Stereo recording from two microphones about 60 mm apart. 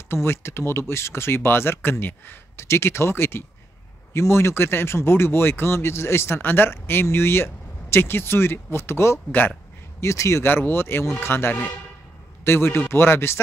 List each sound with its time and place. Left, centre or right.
0.1 s speech: left
2.5 s speech: left
9.3 s speech: left
9.9 s speech: left
10.4 s speech: left